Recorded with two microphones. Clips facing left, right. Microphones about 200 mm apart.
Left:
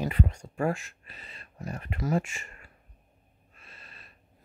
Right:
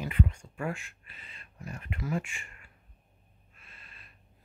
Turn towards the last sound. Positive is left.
turn(degrees=40)  # may be behind; listen again after turning